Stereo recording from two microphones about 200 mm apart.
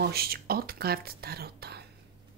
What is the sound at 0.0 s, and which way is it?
Speech, 50° right (ahead or behind).